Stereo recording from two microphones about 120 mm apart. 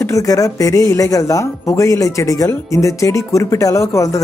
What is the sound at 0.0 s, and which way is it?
Speech, 25° left (ahead or behind).